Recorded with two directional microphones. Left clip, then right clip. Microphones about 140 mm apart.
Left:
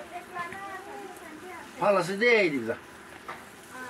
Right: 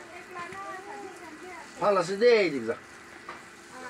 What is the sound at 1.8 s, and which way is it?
Speech, 15° left (ahead or behind).